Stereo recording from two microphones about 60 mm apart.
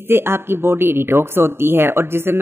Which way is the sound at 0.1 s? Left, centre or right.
Right.